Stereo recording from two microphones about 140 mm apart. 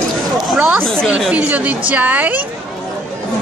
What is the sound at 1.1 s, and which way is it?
Speech, 10° right (ahead or behind).